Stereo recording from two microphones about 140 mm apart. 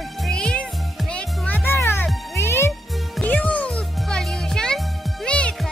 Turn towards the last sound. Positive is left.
turn(degrees=10)  # may be behind; listen again after turning